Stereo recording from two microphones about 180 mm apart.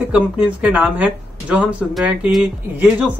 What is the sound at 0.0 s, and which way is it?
Speech, 5° right (ahead or behind).